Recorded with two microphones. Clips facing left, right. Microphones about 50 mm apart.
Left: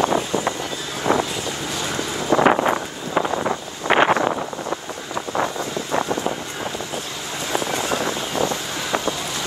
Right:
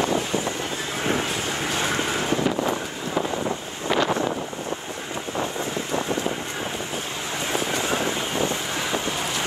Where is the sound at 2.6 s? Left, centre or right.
Left.